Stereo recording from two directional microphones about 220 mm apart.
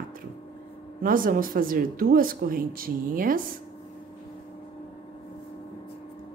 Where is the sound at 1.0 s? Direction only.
40° right (ahead or behind).